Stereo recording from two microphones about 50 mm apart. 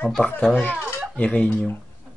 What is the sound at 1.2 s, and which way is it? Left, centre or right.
Speech, left.